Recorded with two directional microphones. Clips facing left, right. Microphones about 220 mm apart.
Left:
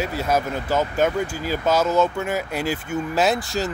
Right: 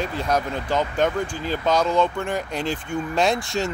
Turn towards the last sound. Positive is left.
turn(degrees=0)  # may be behind; listen again after turning